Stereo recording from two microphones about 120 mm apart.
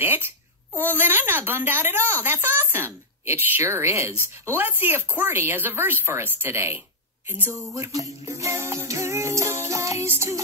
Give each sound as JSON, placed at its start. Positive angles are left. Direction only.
{"t": 0.0, "sound": "a child's voice", "side_deg": -20}